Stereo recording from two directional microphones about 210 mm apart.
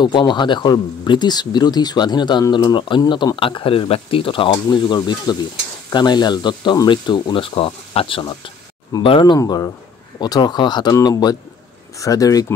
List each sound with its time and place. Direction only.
0.0 s speech: 20° left (ahead or behind)